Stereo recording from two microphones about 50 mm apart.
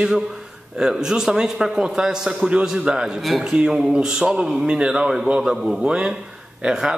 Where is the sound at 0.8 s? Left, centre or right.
Centre.